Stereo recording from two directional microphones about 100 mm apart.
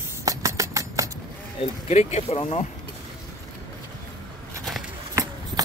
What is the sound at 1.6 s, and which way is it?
Speech, 90° left.